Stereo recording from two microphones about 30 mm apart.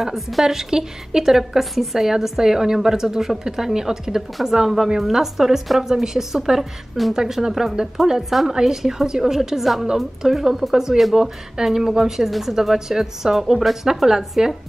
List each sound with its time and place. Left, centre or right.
0.0 s a woman's voice: centre
1.6 s a woman's voice: centre
2.0 s a woman's voice: centre
8.5 s a woman's voice: centre
10.7 s a woman's voice: centre